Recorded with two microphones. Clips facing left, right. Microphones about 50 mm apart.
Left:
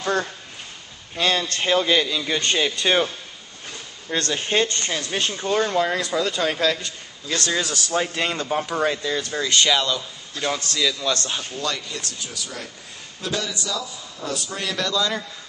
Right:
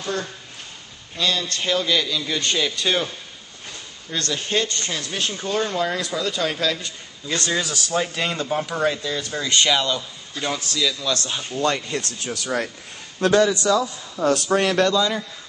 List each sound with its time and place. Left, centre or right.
1.1 s a man's voice: left
4.1 s a man's voice: left
4.8 s a man's voice: centre
9.6 s a man's voice: centre
11.5 s a man's voice: right